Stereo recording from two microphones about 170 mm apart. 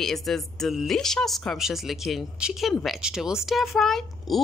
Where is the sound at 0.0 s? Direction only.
Centre (ahead or behind).